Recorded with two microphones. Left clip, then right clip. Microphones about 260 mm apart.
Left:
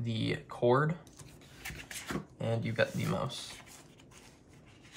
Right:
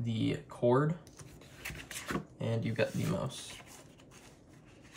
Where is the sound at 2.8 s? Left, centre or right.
Centre.